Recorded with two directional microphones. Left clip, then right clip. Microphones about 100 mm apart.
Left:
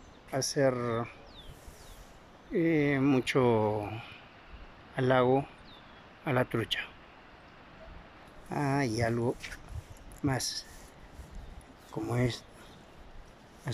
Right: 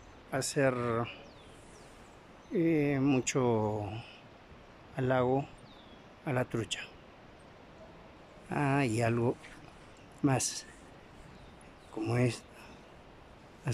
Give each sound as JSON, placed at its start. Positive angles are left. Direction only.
{"t": 0.3, "sound": "speech", "side_deg": -5}
{"t": 2.5, "sound": "speech", "side_deg": -5}
{"t": 8.5, "sound": "speech", "side_deg": -5}
{"t": 11.9, "sound": "speech", "side_deg": -10}